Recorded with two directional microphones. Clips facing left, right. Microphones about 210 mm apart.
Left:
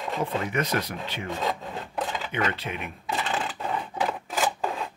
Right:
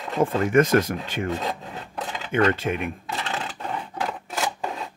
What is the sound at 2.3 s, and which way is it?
Speech, 45° right (ahead or behind).